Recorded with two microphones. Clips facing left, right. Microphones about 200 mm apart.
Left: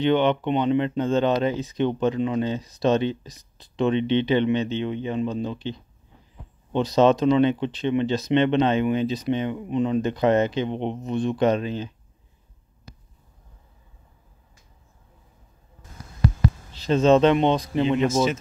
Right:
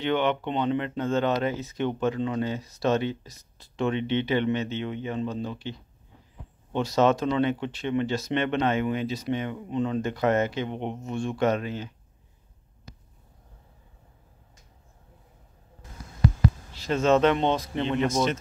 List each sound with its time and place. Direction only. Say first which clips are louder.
0.0 s speech: left 5 dB; 20° left (ahead or behind)
17.0 s speech: left 4 dB; 20° left (ahead or behind)
18.0 s speech: left 3 dB; 5° left (ahead or behind)